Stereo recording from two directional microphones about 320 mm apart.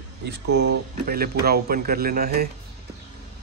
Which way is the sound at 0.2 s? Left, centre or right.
Right.